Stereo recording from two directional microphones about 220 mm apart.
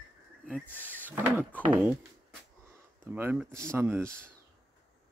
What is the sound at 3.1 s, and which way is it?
Speech, 10° right (ahead or behind).